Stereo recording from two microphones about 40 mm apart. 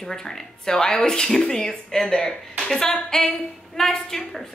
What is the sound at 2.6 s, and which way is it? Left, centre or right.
Music, centre.